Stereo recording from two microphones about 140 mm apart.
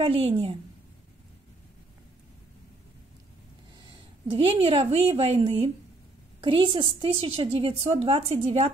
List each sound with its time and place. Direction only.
0.0 s a woman's voice: 45° right (ahead or behind)
4.3 s a woman's voice: 45° right (ahead or behind)
6.4 s a woman's voice: 40° right (ahead or behind)